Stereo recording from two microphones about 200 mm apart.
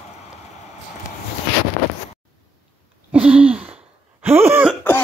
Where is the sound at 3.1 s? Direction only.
5° right (ahead or behind).